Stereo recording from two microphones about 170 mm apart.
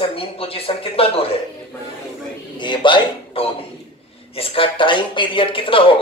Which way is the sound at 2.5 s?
30° left (ahead or behind).